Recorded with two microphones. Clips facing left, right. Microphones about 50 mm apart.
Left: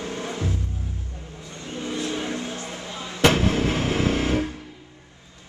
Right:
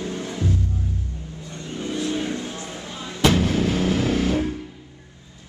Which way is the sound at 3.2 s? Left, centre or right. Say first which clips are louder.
Even; left.